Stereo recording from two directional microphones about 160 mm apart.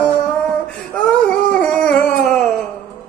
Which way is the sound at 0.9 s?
5° left (ahead or behind).